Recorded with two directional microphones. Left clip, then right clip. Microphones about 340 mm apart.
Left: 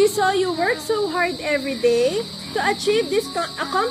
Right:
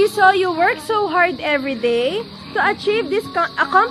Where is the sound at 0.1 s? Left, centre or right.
Right.